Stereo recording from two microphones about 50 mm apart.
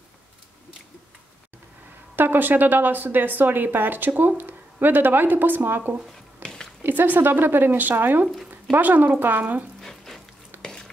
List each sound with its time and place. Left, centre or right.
2.1 s a woman's voice: right
6.4 s a sound: centre
6.8 s a woman's voice: right
9.8 s frying: centre
10.6 s stir: centre